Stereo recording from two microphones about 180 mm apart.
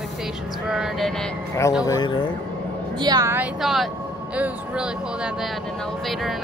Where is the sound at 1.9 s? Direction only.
25° left (ahead or behind).